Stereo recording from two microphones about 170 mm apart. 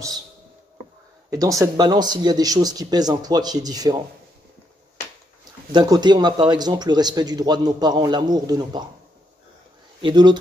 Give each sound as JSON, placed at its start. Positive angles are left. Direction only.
{"t": 1.3, "sound": "speech", "side_deg": -20}
{"t": 5.7, "sound": "speech", "side_deg": -25}
{"t": 10.0, "sound": "speech", "side_deg": -25}